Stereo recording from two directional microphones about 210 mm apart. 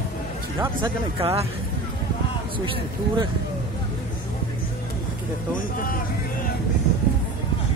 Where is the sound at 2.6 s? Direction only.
25° right (ahead or behind).